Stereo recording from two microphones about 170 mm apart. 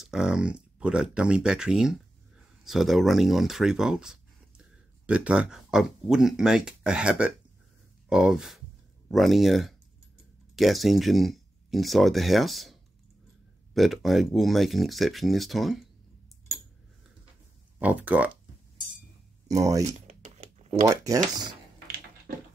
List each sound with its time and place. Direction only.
0.0 s speech: 5° right (ahead or behind)
13.7 s speech: centre (ahead or behind)
17.7 s speech: 10° right (ahead or behind)
19.4 s speech: 20° right (ahead or behind)
20.1 s crumpling: 45° right (ahead or behind)
20.8 s speech: 20° right (ahead or behind)